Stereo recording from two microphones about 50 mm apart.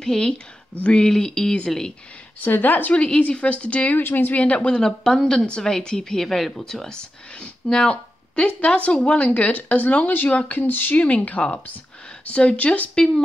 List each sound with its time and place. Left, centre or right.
0.0 s speech: centre
2.4 s a woman's voice: left
3.0 s speech: left
3.9 s a woman's voice: left
4.4 s speech: left
12.9 s speech: centre